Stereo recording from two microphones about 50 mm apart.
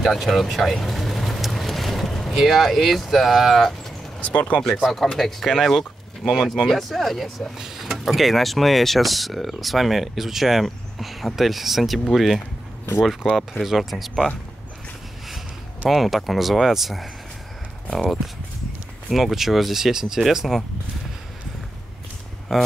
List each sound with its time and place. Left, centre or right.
0.0 s speech: centre
4.2 s speech: left
5.0 s speech: centre
6.5 s speech: centre
15.9 s speech: centre